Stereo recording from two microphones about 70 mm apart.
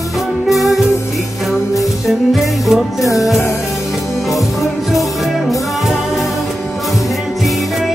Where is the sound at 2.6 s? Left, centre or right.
Centre.